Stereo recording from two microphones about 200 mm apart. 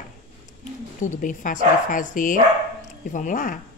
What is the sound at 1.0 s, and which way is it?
Speech, 40° left (ahead or behind).